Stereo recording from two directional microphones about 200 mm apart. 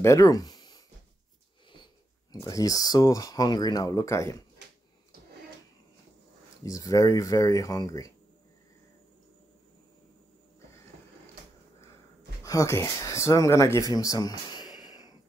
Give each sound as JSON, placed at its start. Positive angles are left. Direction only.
{"t": 0.0, "sound": "a sound", "side_deg": 15}
{"t": 2.4, "sound": "speech", "side_deg": 15}
{"t": 6.6, "sound": "speech", "side_deg": 15}
{"t": 12.4, "sound": "speech", "side_deg": 15}